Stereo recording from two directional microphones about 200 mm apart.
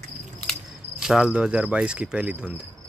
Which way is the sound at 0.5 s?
Centre (ahead or behind).